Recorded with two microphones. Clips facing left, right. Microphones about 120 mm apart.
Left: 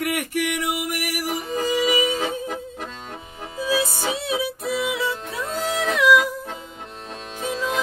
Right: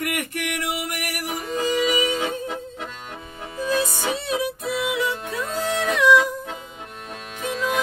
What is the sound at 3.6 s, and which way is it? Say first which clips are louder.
Music: even; 5° left (ahead or behind).